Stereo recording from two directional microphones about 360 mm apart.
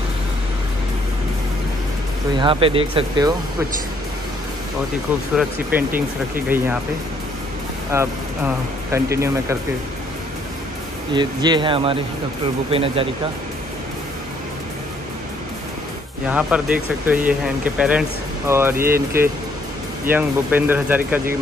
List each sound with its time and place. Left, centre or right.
2.3 s speech: centre
5.3 s speech: centre
5.9 s speech: right
7.9 s speech: centre
11.1 s speech: centre
16.3 s speech: centre